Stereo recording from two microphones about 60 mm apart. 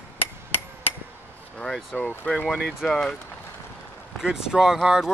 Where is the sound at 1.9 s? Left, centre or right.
Left.